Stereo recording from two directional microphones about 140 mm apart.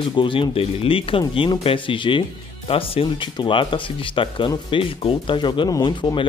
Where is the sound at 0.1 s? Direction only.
35° left (ahead or behind).